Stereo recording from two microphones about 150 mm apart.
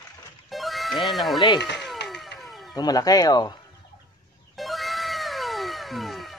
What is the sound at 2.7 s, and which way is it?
Speech, 25° left (ahead or behind).